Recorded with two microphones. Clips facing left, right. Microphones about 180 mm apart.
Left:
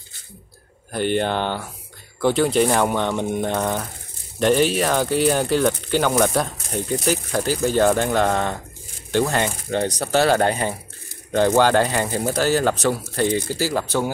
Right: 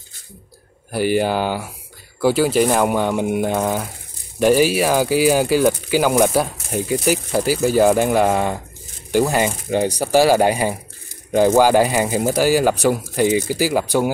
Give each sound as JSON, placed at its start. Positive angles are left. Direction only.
{"t": 0.9, "sound": "speech", "side_deg": -5}